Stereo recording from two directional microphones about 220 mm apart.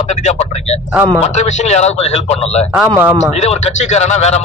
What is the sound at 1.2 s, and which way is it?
A man's voice, 30° left (ahead or behind).